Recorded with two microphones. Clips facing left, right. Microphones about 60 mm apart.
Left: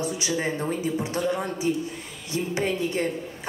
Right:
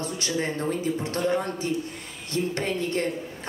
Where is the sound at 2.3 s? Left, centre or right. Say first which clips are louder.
Left 1 dB; centre.